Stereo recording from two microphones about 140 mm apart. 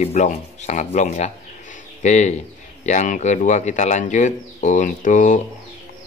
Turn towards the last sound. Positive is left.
turn(degrees=65)  # may be behind; listen again after turning